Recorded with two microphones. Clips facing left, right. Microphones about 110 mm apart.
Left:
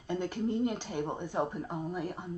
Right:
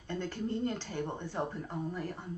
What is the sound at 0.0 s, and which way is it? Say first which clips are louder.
Speech: left 4 dB; 15° left (ahead or behind).